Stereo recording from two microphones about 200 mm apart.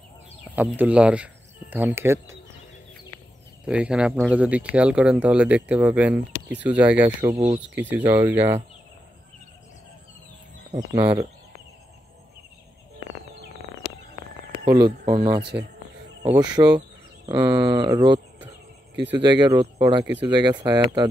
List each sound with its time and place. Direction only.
0.6 s speech: 5° right (ahead or behind)
3.6 s speech: 5° right (ahead or behind)
7.3 s speech: 30° right (ahead or behind)
7.7 s speech: 10° right (ahead or behind)
10.9 s speech: 20° right (ahead or behind)
14.8 s speech: 20° right (ahead or behind)